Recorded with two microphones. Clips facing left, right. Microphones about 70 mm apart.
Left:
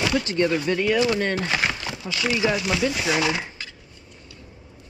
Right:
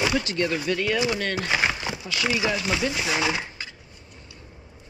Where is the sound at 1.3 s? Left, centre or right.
Centre.